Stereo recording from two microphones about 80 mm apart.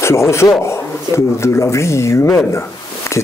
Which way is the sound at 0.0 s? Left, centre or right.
Left.